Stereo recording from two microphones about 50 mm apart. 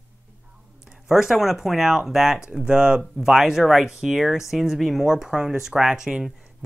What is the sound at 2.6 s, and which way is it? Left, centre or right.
Speech, right.